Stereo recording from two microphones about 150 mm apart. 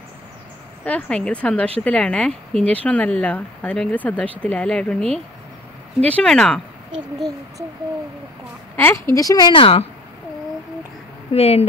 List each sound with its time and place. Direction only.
0.8 s speech: 5° left (ahead or behind)
6.0 s speech: 5° left (ahead or behind)
8.7 s a woman's voice: 15° left (ahead or behind); by 9.8 s 40° left (ahead or behind)
11.3 s a woman's voice: 40° left (ahead or behind)